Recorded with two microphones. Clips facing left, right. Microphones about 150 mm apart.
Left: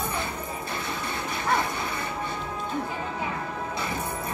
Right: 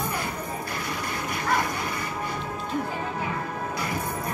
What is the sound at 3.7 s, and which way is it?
Smash, 25° left (ahead or behind).